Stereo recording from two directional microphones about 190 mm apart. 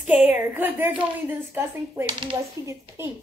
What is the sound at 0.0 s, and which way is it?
Speech, 5° right (ahead or behind).